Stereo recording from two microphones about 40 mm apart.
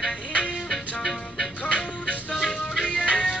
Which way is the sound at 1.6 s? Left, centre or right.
Left.